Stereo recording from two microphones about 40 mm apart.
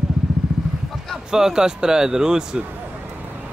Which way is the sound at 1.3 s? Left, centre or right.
Centre.